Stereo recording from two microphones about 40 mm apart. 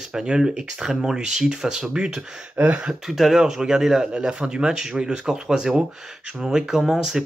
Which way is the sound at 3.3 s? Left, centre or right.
Centre.